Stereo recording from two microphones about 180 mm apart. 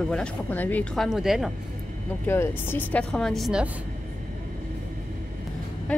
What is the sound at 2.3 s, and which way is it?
Speech, 10° left (ahead or behind).